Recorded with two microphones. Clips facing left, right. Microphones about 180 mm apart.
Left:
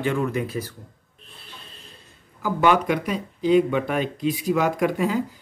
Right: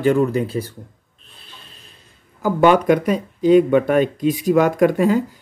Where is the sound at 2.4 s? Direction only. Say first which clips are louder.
Right 5 dB; 50° right (ahead or behind).